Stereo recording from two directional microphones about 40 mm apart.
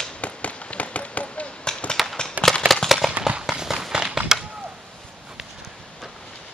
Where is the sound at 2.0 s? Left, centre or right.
Centre.